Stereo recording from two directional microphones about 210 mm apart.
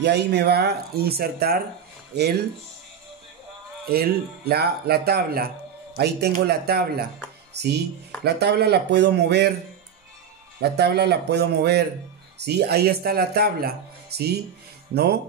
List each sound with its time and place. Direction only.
0.0 s speech: 50° right (ahead or behind)
3.8 s speech: 45° right (ahead or behind)
10.6 s speech: 50° right (ahead or behind)